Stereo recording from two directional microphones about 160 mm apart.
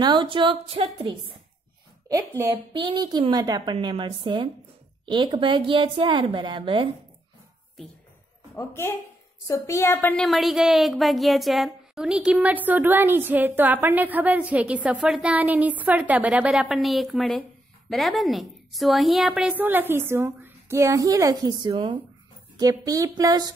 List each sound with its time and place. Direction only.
0.0 s a sound: 30° right (ahead or behind)
2.0 s a woman's voice: 20° right (ahead or behind)
2.5 s a woman's voice: 30° right (ahead or behind)
8.5 s a woman's voice: 15° left (ahead or behind)
10.2 s a woman's voice: centre (ahead or behind); by 23.5 s 25° right (ahead or behind)